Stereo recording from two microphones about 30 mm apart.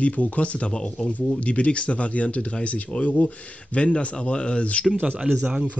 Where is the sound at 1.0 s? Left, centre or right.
Left.